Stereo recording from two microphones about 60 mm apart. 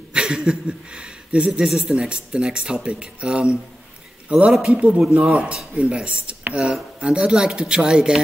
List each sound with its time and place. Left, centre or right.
0.1 s speech: centre